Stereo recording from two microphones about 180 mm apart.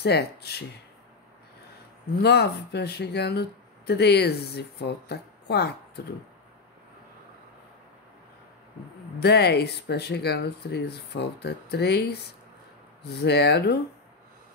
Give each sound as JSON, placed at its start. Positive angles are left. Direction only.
{"t": 0.0, "sound": "speech", "side_deg": 65}
{"t": 2.2, "sound": "speech", "side_deg": 65}
{"t": 9.2, "sound": "speech", "side_deg": 65}